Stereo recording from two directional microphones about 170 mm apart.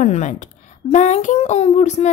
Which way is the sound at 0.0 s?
45° left (ahead or behind).